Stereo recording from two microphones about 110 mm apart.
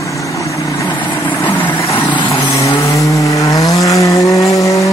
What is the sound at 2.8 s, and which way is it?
Vehicle, 30° left (ahead or behind).